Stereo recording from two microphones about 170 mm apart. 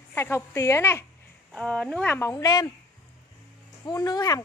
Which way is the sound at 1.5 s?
5° left (ahead or behind).